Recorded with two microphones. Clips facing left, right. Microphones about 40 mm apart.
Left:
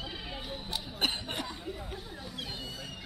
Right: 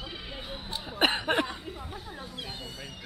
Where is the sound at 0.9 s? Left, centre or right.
Right.